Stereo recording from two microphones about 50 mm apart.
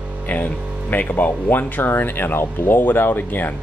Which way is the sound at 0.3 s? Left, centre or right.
Left.